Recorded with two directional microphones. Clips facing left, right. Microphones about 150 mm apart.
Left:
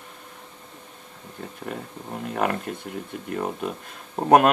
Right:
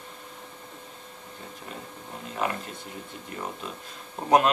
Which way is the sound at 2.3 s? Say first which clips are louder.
Left 5 dB; 55° left (ahead or behind).